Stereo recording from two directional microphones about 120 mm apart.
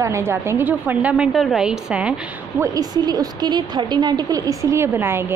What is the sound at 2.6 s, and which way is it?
A woman's voice, 30° right (ahead or behind).